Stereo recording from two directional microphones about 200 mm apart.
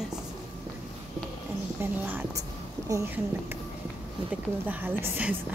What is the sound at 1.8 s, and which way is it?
A woman's voice, 10° right (ahead or behind).